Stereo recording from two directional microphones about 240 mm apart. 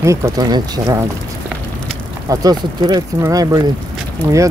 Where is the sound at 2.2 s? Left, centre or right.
Centre.